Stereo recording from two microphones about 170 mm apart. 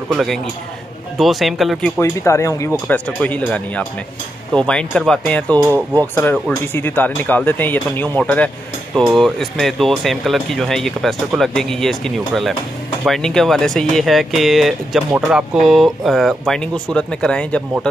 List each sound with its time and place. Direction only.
0.1 s speech: centre (ahead or behind)
2.0 s speech: 15° left (ahead or behind)